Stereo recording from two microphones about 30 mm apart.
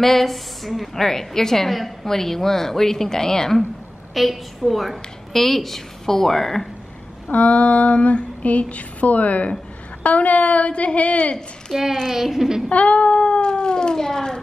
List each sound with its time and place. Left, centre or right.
0.0 s speech: centre
0.9 s a woman's voice: centre
4.1 s a woman's voice: centre
7.2 s female singing: left
11.7 s speech: centre
12.1 s a woman's voice: centre
12.7 s cat: left